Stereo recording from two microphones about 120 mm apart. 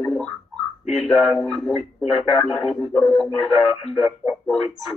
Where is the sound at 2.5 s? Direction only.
50° left (ahead or behind).